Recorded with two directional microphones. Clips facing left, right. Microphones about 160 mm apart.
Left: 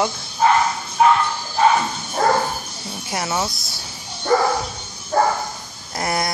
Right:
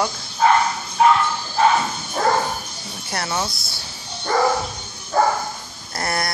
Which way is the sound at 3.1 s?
10° left (ahead or behind).